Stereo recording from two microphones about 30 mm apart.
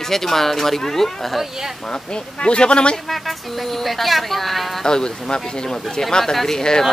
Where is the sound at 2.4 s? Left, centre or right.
Left.